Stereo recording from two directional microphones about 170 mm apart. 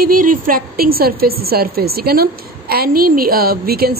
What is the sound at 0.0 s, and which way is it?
A woman's voice, 55° right (ahead or behind).